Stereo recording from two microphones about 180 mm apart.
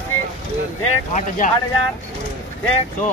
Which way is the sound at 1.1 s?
45° left (ahead or behind).